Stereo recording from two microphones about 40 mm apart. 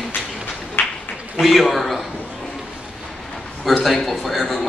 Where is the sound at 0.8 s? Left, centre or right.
Left.